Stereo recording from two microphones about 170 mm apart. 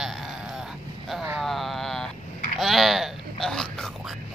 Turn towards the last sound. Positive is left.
turn(degrees=5)  # may be behind; listen again after turning